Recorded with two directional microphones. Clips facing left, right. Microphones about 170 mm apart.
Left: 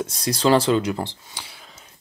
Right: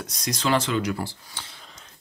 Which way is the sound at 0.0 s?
30° left (ahead or behind).